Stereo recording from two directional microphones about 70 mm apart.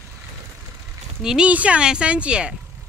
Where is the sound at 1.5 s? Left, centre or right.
Centre.